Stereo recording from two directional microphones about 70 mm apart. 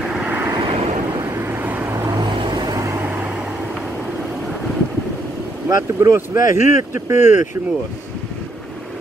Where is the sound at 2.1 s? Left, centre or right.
Right.